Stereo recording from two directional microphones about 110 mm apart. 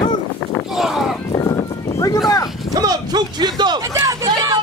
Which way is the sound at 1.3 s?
40° left (ahead or behind).